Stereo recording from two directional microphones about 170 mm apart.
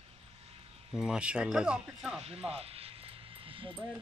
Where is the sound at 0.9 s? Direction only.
5° right (ahead or behind).